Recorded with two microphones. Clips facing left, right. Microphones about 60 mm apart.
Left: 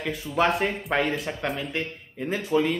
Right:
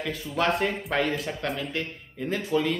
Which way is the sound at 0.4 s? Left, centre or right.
Centre.